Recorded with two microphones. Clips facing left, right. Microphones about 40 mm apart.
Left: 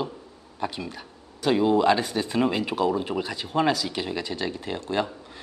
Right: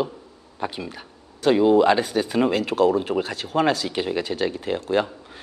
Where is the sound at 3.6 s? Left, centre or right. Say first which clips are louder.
Right 3 dB; centre.